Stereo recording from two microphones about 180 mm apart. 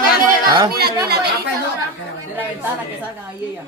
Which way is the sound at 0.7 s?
60° right (ahead or behind).